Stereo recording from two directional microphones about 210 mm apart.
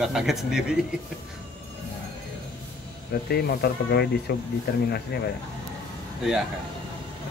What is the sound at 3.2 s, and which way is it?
Speech, 50° left (ahead or behind).